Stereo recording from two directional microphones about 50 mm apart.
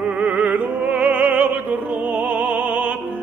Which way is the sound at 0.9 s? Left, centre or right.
Right.